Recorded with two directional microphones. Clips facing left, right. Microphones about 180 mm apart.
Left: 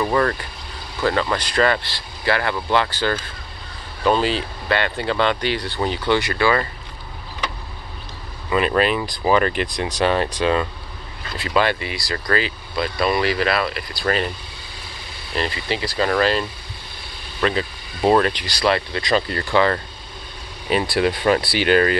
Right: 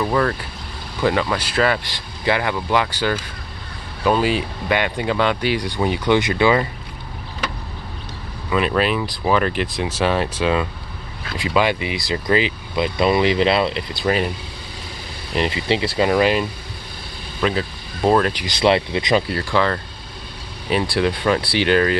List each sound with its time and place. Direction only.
0.0 s speech: centre (ahead or behind); by 6.7 s 15° right (ahead or behind)
8.5 s speech: centre (ahead or behind); by 14.0 s 25° right (ahead or behind)
14.0 s speech: 10° right (ahead or behind)
15.3 s speech: 20° right (ahead or behind)
17.4 s speech: centre (ahead or behind)
18.3 s speech: 15° right (ahead or behind)
19.2 s speech: centre (ahead or behind)
20.9 s speech: 5° left (ahead or behind)